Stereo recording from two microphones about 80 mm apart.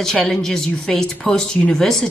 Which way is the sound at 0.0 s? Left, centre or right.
Centre.